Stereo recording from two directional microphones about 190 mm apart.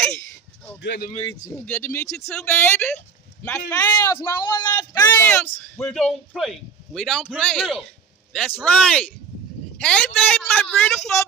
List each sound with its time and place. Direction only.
0.8 s speech: 50° left (ahead or behind)
1.5 s a man's voice: 10° left (ahead or behind)